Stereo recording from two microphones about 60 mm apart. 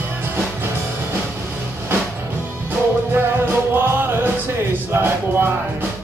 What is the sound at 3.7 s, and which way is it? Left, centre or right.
Music, right.